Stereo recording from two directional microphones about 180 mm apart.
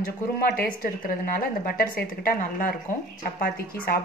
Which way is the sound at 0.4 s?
55° left (ahead or behind).